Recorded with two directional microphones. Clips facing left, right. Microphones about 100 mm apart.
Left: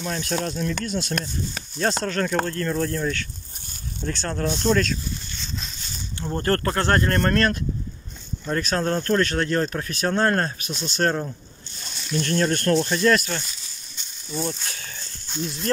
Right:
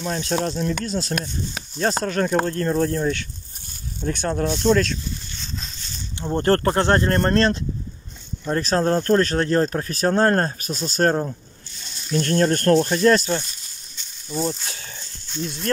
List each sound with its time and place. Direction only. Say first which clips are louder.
0.1 s speech: right 4 dB; 25° right (ahead or behind)
1.2 s speech: right 1 dB; 15° right (ahead or behind)
4.6 s speech: right 3 dB; centre (ahead or behind)
6.1 s speech: right 4 dB; 20° right (ahead or behind)
12.1 s speech: right 3 dB; 45° right (ahead or behind)
14.3 s speech: right 3 dB; 15° right (ahead or behind)
15.4 s speech: right 1 dB; centre (ahead or behind)